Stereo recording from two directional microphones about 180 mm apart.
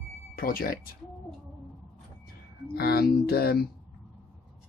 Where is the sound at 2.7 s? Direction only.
60° left (ahead or behind).